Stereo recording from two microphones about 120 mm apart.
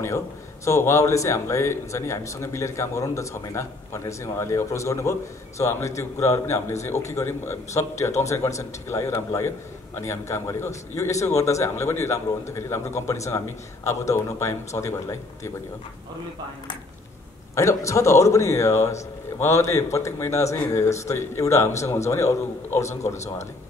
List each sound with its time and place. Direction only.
0.7 s a man's voice: 25° left (ahead or behind)
17.6 s a man's voice: 25° left (ahead or behind)